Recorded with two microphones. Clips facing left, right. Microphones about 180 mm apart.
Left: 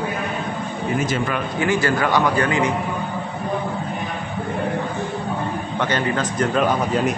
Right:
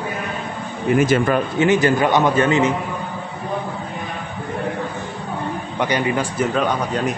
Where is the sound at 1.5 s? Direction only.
20° right (ahead or behind).